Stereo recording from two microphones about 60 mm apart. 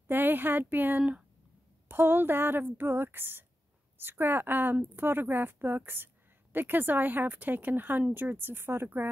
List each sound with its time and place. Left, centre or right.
0.1 s speech: right